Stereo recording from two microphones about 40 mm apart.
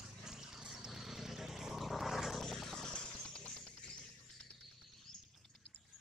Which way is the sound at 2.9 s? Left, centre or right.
Centre.